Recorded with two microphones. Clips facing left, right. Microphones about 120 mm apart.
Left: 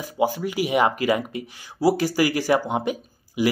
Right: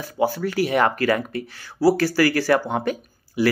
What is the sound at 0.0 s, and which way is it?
Speech, 15° left (ahead or behind).